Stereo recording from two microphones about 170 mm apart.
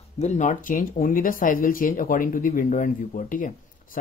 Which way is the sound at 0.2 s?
45° left (ahead or behind).